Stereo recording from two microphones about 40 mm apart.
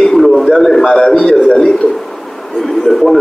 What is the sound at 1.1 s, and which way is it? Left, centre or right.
Speech, centre.